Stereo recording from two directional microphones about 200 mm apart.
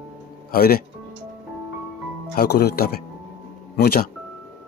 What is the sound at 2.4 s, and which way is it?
Speech, 55° left (ahead or behind).